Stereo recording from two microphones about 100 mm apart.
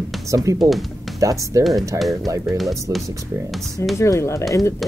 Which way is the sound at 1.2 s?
35° right (ahead or behind).